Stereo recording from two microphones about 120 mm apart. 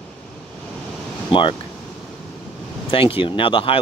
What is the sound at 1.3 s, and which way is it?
Speech, 45° left (ahead or behind).